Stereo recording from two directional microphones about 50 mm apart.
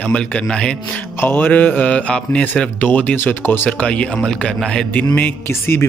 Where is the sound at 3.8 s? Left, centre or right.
Left.